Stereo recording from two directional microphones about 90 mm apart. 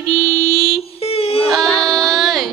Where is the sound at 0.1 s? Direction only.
40° right (ahead or behind).